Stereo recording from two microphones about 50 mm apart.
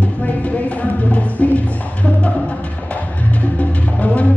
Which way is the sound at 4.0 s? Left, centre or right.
Left.